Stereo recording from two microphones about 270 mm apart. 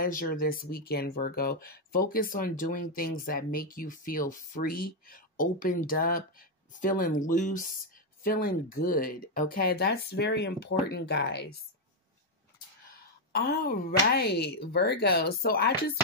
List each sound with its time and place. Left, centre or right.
0.0 s speech: left
13.3 s speech: left